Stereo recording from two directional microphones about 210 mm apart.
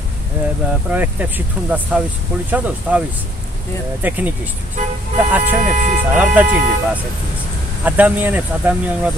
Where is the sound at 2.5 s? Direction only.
10° right (ahead or behind).